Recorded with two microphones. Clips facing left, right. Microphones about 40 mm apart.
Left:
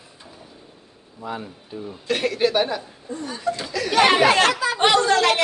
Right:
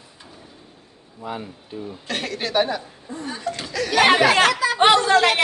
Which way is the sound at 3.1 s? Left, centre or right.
Centre.